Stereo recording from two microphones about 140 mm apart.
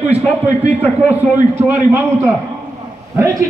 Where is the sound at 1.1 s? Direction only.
10° right (ahead or behind).